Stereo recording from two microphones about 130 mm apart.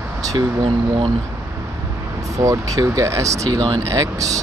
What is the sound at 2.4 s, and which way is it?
Speech, 25° right (ahead or behind).